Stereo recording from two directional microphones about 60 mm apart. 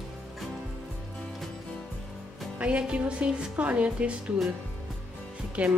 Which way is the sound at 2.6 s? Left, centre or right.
Right.